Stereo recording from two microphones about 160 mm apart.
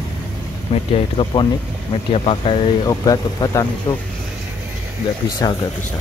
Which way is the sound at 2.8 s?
20° left (ahead or behind).